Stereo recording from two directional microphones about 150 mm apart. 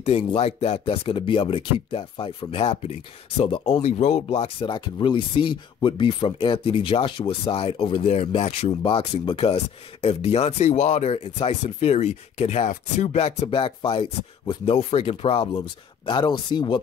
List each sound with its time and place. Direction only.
0.0 s speech: 45° left (ahead or behind)
3.8 s speech: 45° left (ahead or behind); by 14.8 s 30° left (ahead or behind)
14.8 s speech: 40° left (ahead or behind)
16.1 s speech: 30° left (ahead or behind)